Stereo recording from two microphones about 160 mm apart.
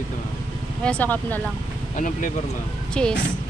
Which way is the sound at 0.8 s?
10° left (ahead or behind).